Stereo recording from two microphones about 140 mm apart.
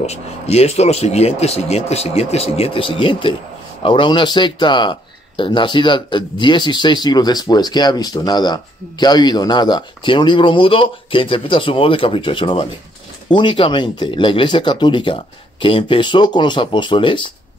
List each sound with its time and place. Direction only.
0.0 s speech: 50° left (ahead or behind)